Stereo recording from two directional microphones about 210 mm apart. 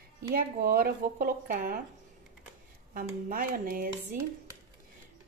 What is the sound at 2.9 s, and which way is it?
Speech, 40° right (ahead or behind).